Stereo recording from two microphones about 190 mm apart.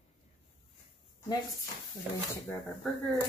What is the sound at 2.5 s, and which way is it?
Speech, 5° left (ahead or behind).